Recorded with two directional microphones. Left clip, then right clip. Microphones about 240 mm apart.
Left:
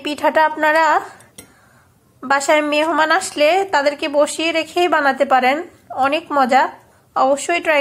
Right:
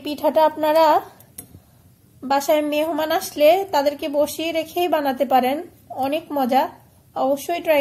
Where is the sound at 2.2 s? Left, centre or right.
Left.